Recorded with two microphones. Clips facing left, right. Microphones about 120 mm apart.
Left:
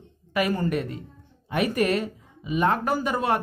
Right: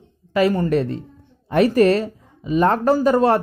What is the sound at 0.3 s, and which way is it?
Speech, 25° right (ahead or behind).